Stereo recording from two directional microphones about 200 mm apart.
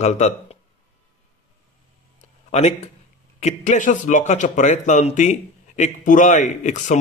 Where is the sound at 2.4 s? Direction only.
35° left (ahead or behind).